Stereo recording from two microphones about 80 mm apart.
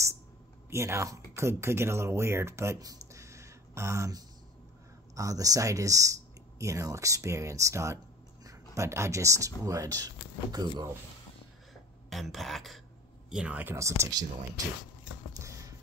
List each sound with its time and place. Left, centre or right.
0.7 s speech: right
12.1 s speech: centre
13.3 s speech: centre
13.7 s speech: right